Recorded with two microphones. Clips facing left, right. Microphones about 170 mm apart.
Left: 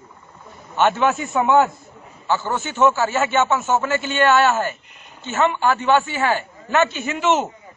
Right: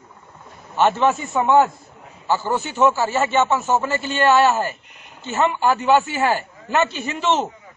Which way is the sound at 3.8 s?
35° right (ahead or behind).